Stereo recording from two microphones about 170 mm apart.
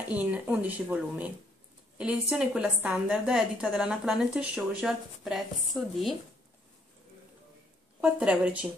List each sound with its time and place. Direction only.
0.1 s a woman's voice: 10° right (ahead or behind)
8.0 s a woman's voice: 5° right (ahead or behind)